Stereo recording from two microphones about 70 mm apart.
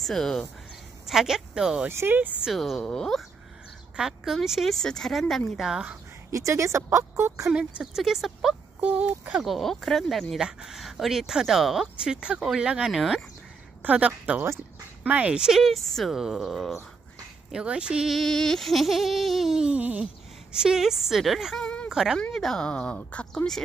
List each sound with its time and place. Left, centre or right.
0.0 s speech: centre
1.0 s speech: centre
1.9 s speech: right
2.4 s speech: centre
3.9 s speech: centre
6.3 s speech: right
7.8 s speech: centre
8.8 s speech: right
9.4 s speech: centre
13.8 s speech: centre
17.5 s speech: centre
18.1 s speech: centre
21.5 s a sound: centre
21.8 s speech: centre